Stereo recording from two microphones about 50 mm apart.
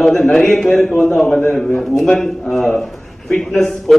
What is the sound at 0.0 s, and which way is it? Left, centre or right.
A man's voice, centre.